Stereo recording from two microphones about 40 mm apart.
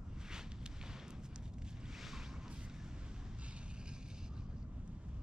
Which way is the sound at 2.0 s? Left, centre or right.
Centre.